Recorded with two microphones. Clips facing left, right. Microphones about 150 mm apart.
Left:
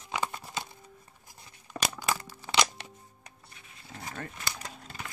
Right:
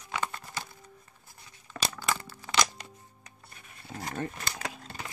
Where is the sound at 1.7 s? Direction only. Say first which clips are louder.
Left 1 dB; 15° left (ahead or behind).